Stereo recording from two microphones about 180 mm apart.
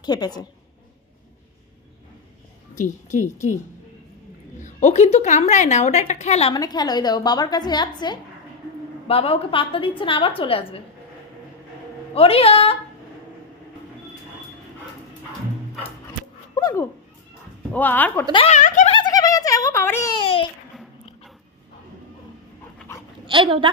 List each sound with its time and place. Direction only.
0.0 s a woman's voice: 20° left (ahead or behind)
2.7 s a woman's voice: 45° left (ahead or behind)
4.6 s a woman's voice: 40° left (ahead or behind)
6.5 s a woman's voice: 20° left (ahead or behind)
12.1 s a woman's voice: 35° left (ahead or behind)
16.5 s dog: 20° left (ahead or behind)
17.7 s speech: 10° left (ahead or behind)
18.3 s speech: 35° left (ahead or behind)
18.9 s a sound: 20° left (ahead or behind)
20.2 s babbling: 30° left (ahead or behind)
23.2 s speech: 30° right (ahead or behind)